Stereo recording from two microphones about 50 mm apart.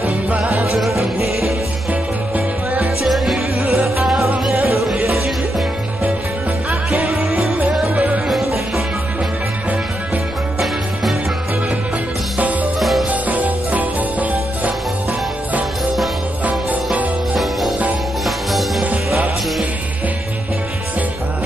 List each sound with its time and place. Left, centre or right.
0.7 s music: centre
1.9 s music: right
3.0 s music: centre
6.7 s music: centre
7.2 s music: centre
12.7 s music: centre
13.1 s music: right
16.4 s music: right
17.4 s music: centre